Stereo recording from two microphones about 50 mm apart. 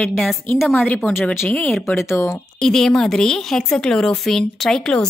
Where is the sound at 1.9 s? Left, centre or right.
Left.